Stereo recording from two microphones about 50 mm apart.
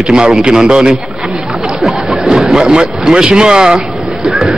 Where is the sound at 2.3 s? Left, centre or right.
Centre.